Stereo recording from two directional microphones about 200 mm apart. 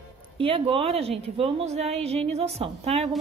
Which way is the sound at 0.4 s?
25° right (ahead or behind).